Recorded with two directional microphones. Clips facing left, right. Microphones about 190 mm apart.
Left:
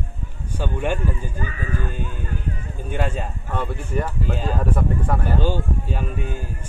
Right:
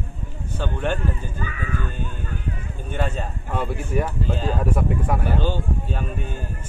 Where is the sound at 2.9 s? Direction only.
10° left (ahead or behind).